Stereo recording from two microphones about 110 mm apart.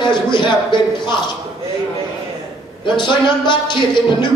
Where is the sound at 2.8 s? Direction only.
45° left (ahead or behind).